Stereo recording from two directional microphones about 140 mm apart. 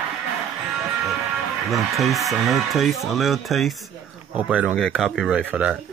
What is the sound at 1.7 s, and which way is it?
Speech, centre (ahead or behind).